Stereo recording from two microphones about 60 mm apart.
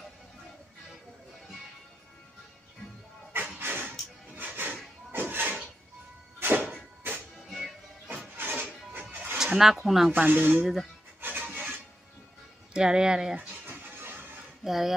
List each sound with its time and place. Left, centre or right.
3.5 s music: right
5.1 s a sound: right
7.4 s music: centre
8.4 s music: right
9.4 s speech: centre
10.1 s speech: right
10.6 s speech: centre
11.1 s filing: right
12.7 s speech: centre
13.7 s music: right
14.6 s speech: centre